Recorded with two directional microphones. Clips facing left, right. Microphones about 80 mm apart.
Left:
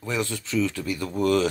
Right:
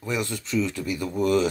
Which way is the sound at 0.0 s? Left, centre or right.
Centre.